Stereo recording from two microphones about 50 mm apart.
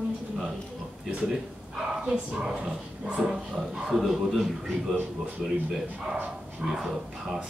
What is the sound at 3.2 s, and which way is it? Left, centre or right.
Speech, centre.